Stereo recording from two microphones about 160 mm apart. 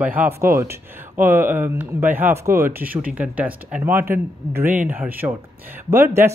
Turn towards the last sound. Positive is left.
turn(degrees=-15)  # may be behind; listen again after turning